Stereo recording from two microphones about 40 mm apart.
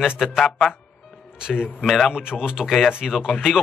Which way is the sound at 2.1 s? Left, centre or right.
Right.